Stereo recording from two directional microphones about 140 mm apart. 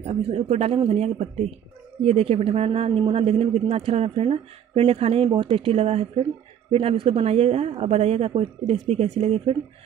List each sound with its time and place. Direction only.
0.0 s a woman's voice: 45° right (ahead or behind)